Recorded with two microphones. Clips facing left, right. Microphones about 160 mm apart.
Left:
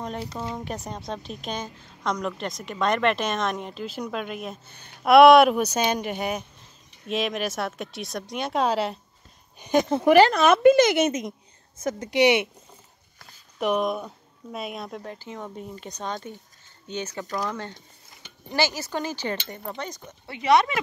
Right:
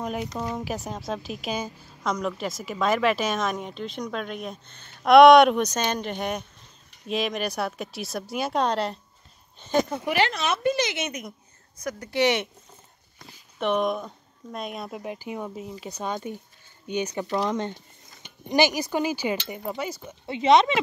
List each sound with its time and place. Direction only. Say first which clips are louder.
0.3 s a woman's voice: right 2 dB; 5° right (ahead or behind)
9.6 s speech: left 2 dB; 15° left (ahead or behind)
10.0 s speech: left 9 dB; 45° left (ahead or behind)
10.8 s a woman's voice: left 9 dB; 40° left (ahead or behind)
11.1 s speech: left 6 dB; 25° left (ahead or behind); by 20.2 s 5° right (ahead or behind)
20.2 s speech: right 2 dB; 20° right (ahead or behind)